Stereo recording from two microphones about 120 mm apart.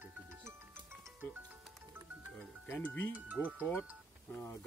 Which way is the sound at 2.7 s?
15° left (ahead or behind).